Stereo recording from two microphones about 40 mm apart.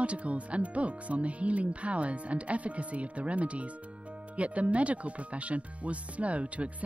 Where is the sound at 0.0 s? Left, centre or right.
Right.